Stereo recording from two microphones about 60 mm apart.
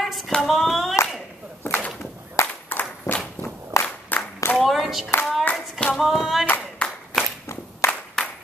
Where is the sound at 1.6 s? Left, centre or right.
Left.